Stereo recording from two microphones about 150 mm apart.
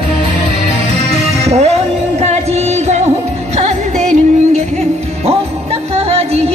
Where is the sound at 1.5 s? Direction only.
45° right (ahead or behind).